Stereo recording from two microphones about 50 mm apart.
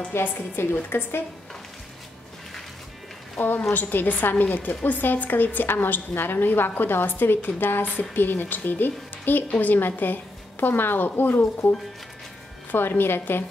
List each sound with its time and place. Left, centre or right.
0.1 s a woman's voice: left
0.8 s a woman's voice: left
3.3 s a woman's voice: left
12.7 s a woman's voice: left